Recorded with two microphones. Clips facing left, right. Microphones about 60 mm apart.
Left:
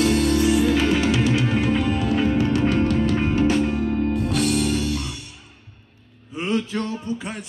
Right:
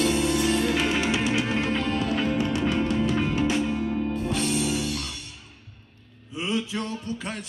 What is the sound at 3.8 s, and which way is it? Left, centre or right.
Music, left.